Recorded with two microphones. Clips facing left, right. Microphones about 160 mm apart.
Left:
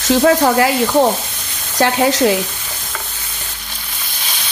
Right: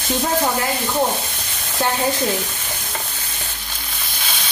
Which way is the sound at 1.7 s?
90° left.